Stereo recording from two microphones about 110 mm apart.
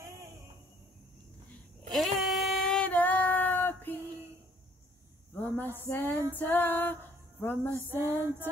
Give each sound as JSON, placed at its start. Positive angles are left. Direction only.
{"t": 0.0, "sound": "a sound", "side_deg": -30}
{"t": 1.9, "sound": "female singing", "side_deg": 0}
{"t": 5.3, "sound": "cricket", "side_deg": 20}
{"t": 5.9, "sound": "music", "side_deg": 20}
{"t": 7.9, "sound": "female singing", "side_deg": -20}